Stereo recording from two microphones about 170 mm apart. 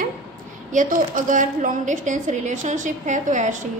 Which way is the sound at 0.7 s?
50° right (ahead or behind).